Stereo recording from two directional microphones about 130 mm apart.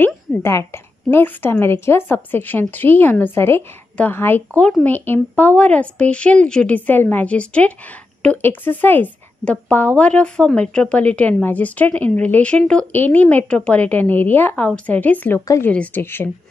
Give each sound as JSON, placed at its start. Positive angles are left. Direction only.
{"t": 0.0, "sound": "speech", "side_deg": 20}
{"t": 15.4, "sound": "speech", "side_deg": 25}
{"t": 15.7, "sound": "speech", "side_deg": 10}